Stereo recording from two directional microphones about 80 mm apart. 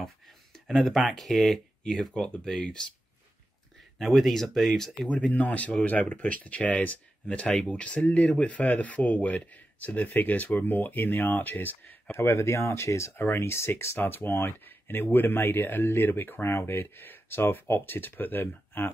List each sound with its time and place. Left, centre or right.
0.7 s speech: centre
4.0 s speech: centre; by 12.2 s left
12.2 s speech: left